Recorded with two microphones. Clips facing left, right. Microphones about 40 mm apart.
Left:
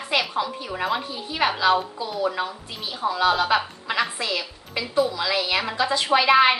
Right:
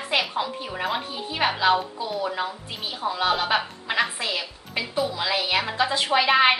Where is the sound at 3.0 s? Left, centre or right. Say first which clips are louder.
Left 3 dB; centre.